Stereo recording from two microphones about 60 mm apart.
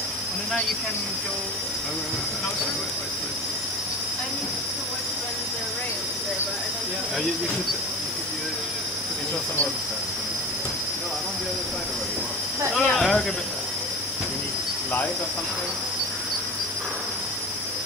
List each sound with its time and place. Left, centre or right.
12.7 s speech: centre